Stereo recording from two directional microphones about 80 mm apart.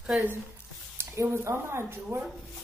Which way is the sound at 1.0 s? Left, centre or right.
Right.